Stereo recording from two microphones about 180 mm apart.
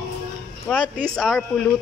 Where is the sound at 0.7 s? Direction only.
5° right (ahead or behind).